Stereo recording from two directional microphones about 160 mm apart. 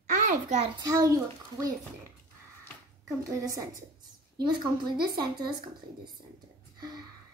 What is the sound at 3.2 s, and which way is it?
A woman's voice, 20° right (ahead or behind).